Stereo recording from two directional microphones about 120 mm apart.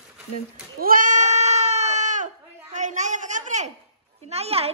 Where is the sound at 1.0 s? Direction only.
85° right.